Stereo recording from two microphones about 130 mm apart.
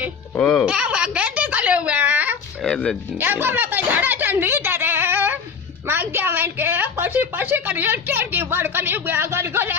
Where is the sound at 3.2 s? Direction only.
15° right (ahead or behind).